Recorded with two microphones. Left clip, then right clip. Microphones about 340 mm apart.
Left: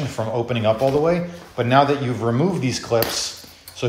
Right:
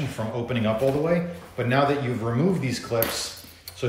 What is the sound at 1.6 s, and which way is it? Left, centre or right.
Speech, centre.